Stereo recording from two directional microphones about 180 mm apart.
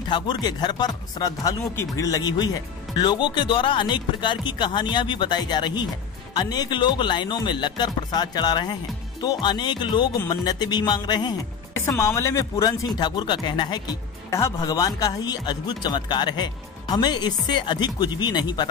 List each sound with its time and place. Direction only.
0.1 s speech: 25° left (ahead or behind)